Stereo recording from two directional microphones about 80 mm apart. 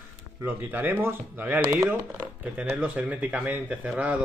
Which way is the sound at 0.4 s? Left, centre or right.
Right.